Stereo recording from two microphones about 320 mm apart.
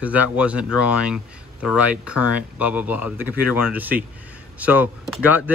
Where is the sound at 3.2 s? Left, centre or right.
Left.